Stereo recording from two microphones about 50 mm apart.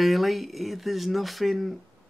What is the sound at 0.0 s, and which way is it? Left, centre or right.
Speech, centre.